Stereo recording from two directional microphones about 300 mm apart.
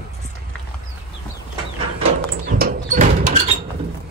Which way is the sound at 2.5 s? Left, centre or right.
Right.